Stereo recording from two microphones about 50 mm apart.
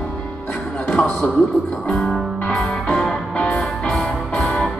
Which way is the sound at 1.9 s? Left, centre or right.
Centre.